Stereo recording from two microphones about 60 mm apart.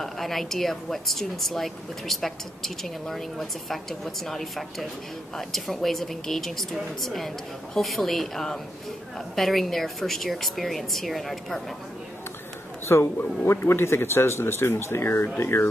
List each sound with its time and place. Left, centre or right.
0.0 s speech: centre
12.8 s a man's voice: left